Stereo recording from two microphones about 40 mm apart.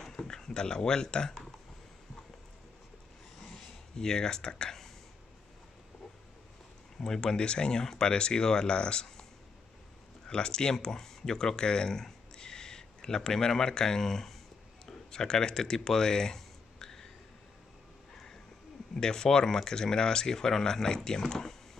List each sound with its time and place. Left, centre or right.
0.0 s a sound: centre
3.9 s speech: centre
7.0 s speech: centre
10.2 s speech: left
14.9 s a sound: centre
18.9 s speech: centre